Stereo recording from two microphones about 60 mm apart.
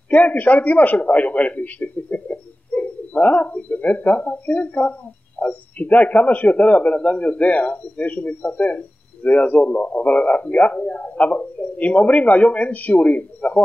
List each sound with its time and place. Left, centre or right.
0.1 s a man's voice: left